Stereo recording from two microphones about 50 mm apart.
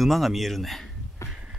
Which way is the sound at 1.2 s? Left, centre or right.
Left.